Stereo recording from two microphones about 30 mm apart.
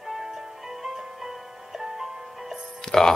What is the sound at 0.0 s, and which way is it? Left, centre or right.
Music, centre.